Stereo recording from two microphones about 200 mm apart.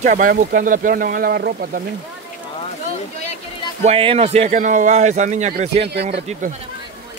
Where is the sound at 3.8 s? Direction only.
30° right (ahead or behind).